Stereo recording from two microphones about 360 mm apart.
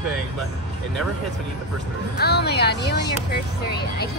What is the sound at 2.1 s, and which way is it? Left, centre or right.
Speech, left.